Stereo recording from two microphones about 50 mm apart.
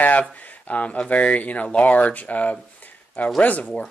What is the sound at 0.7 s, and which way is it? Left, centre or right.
Speech, left.